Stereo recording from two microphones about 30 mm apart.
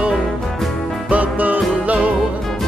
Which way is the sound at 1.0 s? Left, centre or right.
Right.